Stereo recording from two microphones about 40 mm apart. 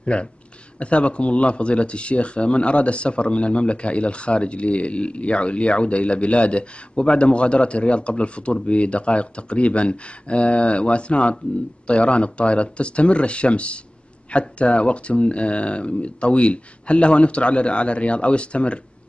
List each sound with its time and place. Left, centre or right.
0.0 s speech: left